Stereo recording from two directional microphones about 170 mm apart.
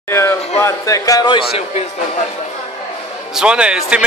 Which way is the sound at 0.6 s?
20° left (ahead or behind).